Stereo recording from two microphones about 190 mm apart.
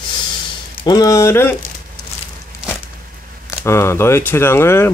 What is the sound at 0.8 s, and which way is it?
Speech, 20° left (ahead or behind).